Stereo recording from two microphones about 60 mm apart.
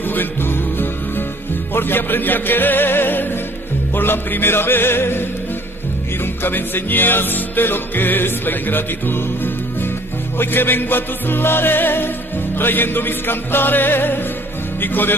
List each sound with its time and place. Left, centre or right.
0.0 s music: left
6.2 s music: left